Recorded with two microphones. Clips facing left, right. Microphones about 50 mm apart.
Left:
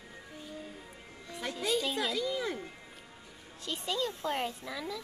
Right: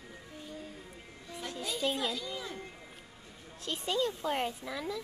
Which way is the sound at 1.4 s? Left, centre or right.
Left.